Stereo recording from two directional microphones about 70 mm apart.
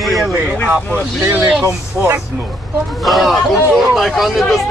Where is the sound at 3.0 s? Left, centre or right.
Centre.